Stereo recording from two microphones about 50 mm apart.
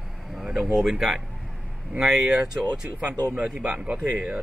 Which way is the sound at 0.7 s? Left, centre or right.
Centre.